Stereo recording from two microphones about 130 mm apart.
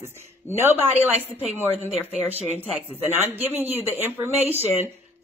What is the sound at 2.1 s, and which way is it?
Speech, 55° right (ahead or behind).